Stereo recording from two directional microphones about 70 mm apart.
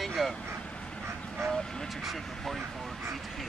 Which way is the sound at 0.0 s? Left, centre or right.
Centre.